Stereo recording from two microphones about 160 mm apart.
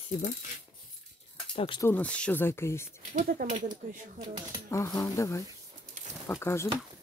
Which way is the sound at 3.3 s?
60° right (ahead or behind).